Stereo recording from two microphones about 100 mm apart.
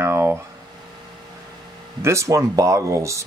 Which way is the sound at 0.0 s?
25° right (ahead or behind).